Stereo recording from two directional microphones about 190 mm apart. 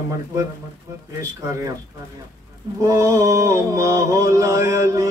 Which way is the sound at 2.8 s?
15° right (ahead or behind).